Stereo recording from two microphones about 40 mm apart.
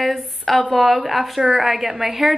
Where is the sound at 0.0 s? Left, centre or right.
Centre.